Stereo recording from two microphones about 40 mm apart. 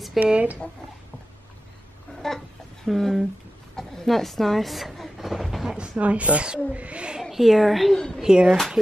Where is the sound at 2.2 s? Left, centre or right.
Centre.